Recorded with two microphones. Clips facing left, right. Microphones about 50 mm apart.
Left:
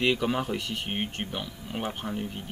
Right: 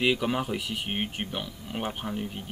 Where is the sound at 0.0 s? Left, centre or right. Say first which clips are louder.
Even; centre.